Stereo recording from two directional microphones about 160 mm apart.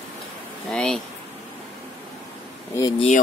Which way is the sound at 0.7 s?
5° left (ahead or behind).